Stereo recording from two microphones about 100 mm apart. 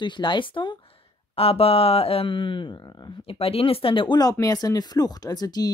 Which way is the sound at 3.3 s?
75° left (ahead or behind).